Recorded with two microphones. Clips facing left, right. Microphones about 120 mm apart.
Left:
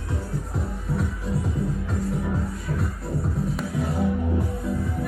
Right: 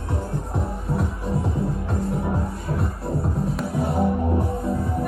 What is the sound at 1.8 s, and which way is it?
Music, 25° right (ahead or behind).